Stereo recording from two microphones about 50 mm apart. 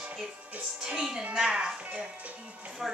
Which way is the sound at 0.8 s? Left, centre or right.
Centre.